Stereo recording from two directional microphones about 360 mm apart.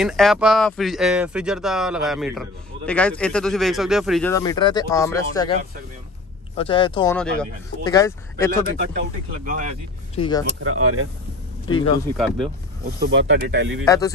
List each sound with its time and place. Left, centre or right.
0.0 s speech: centre
8.9 s speech: right
10.1 s speech: centre
10.6 s speech: right
11.6 s speech: centre
12.8 s speech: right
13.8 s speech: centre